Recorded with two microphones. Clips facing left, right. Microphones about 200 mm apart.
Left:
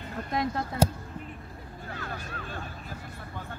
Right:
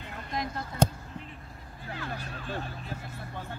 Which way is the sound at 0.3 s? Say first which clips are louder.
Left 5 dB; 60° left (ahead or behind).